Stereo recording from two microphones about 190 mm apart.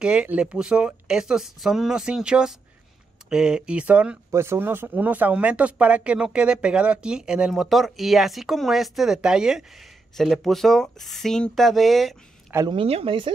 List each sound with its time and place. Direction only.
0.0 s speech: 5° right (ahead or behind)
12.5 s speech: 25° right (ahead or behind)